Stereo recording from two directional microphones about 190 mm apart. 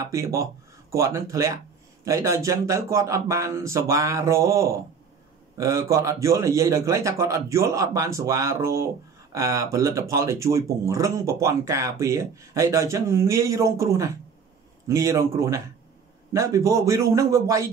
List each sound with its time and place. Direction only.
0.0 s a man's voice: 15° right (ahead or behind)